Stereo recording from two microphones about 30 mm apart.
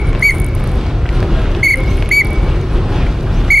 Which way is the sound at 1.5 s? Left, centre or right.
Centre.